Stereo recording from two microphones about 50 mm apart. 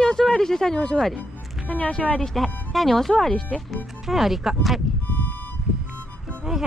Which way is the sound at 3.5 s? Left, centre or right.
Centre.